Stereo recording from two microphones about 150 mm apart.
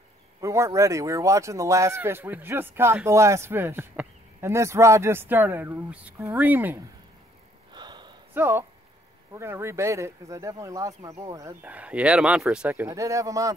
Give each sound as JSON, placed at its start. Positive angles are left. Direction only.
{"t": 0.4, "sound": "speech", "side_deg": -20}
{"t": 7.7, "sound": "a sound", "side_deg": -30}
{"t": 8.4, "sound": "speech", "side_deg": -15}
{"t": 11.6, "sound": "speech", "side_deg": -10}